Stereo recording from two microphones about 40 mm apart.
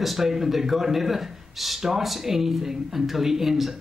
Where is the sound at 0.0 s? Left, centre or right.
Centre.